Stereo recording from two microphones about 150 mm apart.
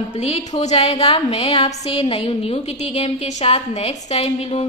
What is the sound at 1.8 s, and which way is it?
A woman's voice, 35° left (ahead or behind).